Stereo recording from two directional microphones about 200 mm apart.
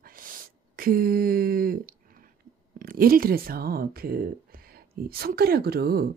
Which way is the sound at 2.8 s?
45° right (ahead or behind).